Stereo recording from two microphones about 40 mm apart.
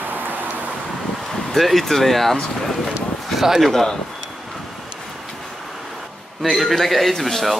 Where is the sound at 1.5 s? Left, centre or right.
Centre.